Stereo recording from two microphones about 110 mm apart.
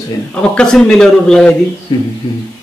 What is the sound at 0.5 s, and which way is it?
Speech, 5° left (ahead or behind).